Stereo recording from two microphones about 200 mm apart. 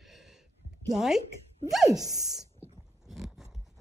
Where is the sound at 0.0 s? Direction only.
Centre (ahead or behind).